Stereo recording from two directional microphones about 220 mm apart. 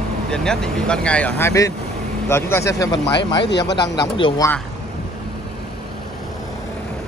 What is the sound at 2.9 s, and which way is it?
Speech, 50° left (ahead or behind).